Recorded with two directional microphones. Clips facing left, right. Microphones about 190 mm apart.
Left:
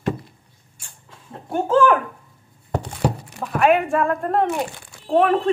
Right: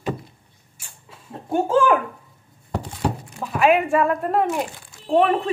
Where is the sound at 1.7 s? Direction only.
10° right (ahead or behind).